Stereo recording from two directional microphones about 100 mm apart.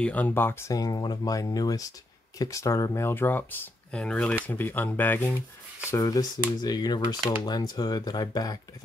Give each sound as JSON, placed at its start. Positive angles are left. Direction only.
{"t": 0.0, "sound": "speech", "side_deg": 15}
{"t": 0.7, "sound": "speech", "side_deg": 40}
{"t": 4.0, "sound": "speech", "side_deg": 10}
{"t": 5.9, "sound": "speech", "side_deg": 35}